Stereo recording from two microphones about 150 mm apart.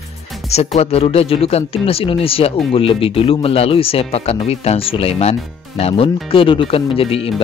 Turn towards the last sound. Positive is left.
turn(degrees=40)  # may be behind; listen again after turning